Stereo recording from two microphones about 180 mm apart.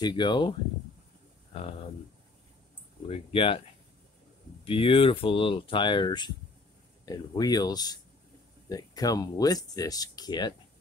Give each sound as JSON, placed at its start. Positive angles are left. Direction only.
{"t": 0.0, "sound": "speech", "side_deg": 25}
{"t": 3.1, "sound": "speech", "side_deg": 30}
{"t": 4.6, "sound": "speech", "side_deg": 30}